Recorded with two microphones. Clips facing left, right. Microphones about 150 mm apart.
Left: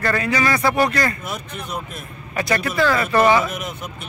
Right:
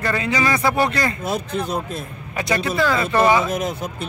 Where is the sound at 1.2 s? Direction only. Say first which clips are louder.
Right 7 dB; 30° right (ahead or behind).